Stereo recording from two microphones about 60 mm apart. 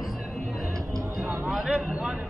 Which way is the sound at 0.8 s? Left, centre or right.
Right.